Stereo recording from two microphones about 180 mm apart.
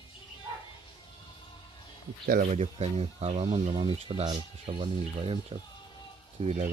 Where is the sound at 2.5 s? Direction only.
35° right (ahead or behind).